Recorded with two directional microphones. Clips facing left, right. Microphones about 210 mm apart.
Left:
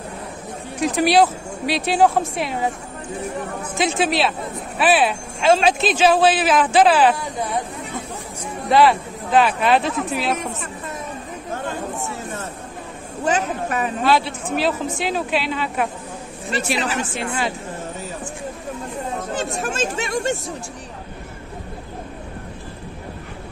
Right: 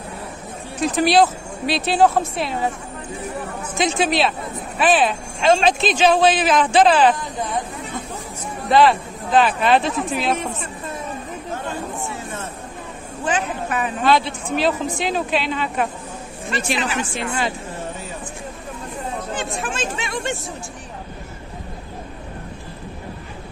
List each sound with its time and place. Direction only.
0.7 s speech: 10° left (ahead or behind)
3.7 s speech: 5° left (ahead or behind)
8.6 s speech: 10° left (ahead or behind)
13.2 s a woman's voice: 40° left (ahead or behind)
14.0 s speech: 5° left (ahead or behind)
19.3 s speech: 40° left (ahead or behind)